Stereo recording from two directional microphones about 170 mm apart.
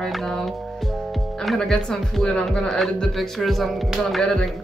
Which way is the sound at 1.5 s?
5° left (ahead or behind).